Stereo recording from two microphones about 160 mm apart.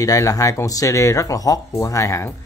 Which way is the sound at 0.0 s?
20° left (ahead or behind).